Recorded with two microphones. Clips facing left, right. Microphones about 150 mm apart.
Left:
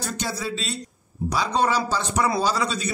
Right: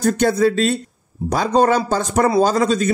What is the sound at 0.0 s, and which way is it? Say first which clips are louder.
Speech: right 14 dB; 55° right (ahead or behind).